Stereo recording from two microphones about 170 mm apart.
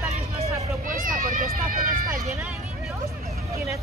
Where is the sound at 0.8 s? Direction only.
55° right (ahead or behind).